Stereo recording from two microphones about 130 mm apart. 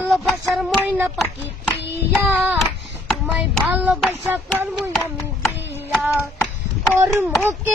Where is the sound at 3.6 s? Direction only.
5° right (ahead or behind).